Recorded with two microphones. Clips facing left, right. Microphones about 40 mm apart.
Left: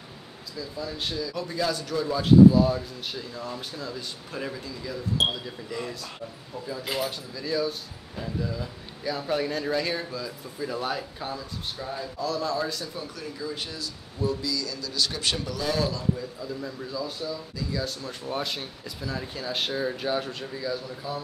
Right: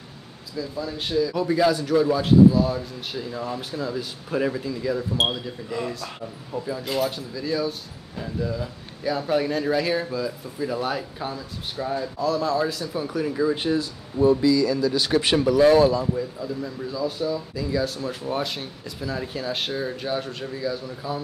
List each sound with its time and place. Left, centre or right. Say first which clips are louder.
0.6 s a man's voice: right 4 dB; centre
6.8 s speech: right 4 dB; centre
7.1 s speech: right 4 dB; centre
13.0 s a man's voice: right 11 dB; centre
13.4 s speech: right 12 dB; right
15.6 s speech: right 11 dB; right
16.0 s a man's voice: right 4 dB; centre
16.4 s speech: right 4 dB; centre